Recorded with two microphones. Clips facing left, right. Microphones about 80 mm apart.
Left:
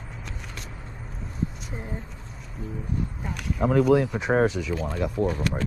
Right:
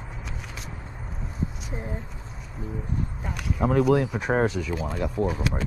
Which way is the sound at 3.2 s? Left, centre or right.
Centre.